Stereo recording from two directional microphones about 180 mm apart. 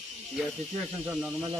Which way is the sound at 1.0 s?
5° right (ahead or behind).